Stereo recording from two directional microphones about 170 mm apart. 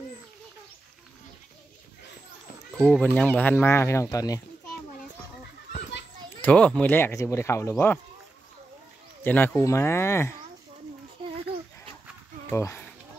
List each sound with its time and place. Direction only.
2.7 s speech: 5° left (ahead or behind)
5.7 s children playing: 90° left
6.4 s speech: 5° left (ahead or behind)
9.2 s speech: 10° left (ahead or behind)
12.4 s speech: 15° left (ahead or behind)